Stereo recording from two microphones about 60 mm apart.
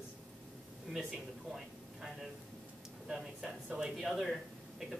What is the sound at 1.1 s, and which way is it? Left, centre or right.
Speech, centre.